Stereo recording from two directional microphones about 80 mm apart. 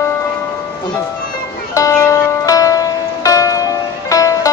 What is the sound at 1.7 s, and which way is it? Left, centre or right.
Music, left.